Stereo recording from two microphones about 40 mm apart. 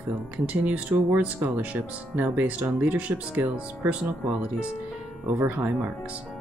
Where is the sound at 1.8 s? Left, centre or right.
Right.